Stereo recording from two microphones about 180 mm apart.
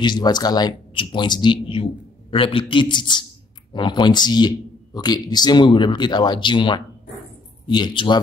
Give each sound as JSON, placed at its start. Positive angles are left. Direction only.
{"t": 0.0, "sound": "speech", "side_deg": 25}